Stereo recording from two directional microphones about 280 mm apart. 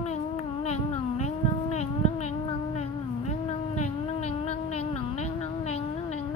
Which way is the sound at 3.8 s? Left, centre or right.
Left.